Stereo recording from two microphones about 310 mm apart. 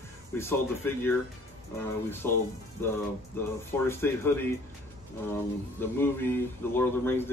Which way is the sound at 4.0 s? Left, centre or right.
Centre.